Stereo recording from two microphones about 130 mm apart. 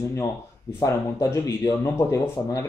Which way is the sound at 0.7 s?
25° left (ahead or behind).